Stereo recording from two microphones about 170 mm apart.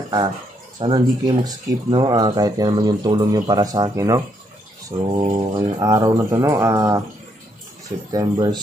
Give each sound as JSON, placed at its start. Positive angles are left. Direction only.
{"t": 0.7, "sound": "speech", "side_deg": -25}
{"t": 8.1, "sound": "speech", "side_deg": -25}